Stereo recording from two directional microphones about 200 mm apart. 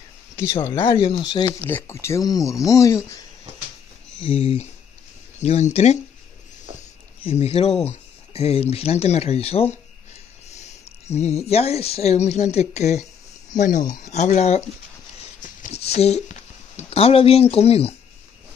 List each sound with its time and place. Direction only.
0.7 s speech: 25° left (ahead or behind)
4.2 s speech: 30° left (ahead or behind)
7.2 s speech: 30° left (ahead or behind)
11.1 s speech: 30° left (ahead or behind)